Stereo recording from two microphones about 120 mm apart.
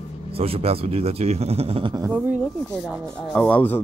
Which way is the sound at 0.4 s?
55° right (ahead or behind).